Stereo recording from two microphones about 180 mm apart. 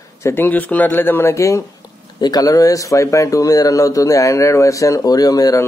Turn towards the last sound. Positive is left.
turn(degrees=20)  # may be behind; listen again after turning